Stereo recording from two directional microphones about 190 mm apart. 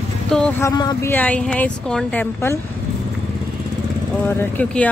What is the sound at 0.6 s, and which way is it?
Speech, 20° left (ahead or behind).